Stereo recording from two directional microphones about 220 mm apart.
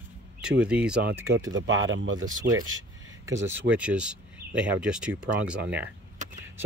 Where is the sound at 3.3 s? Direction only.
10° right (ahead or behind).